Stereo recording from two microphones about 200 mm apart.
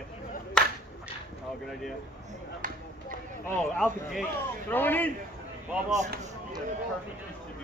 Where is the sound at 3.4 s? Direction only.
10° left (ahead or behind).